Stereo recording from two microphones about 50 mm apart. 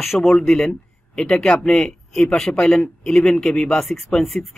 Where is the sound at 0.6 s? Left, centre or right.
Centre.